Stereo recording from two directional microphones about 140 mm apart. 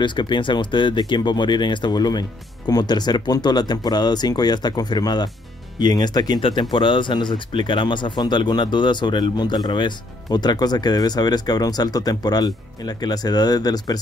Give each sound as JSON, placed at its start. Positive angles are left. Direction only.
{"t": 0.0, "sound": "speech", "side_deg": 35}